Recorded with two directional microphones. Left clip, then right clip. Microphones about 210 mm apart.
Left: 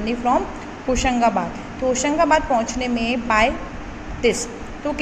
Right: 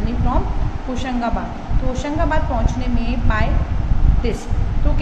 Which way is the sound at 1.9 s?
25° left (ahead or behind).